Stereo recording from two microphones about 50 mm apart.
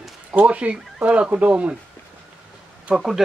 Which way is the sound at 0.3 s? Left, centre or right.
Right.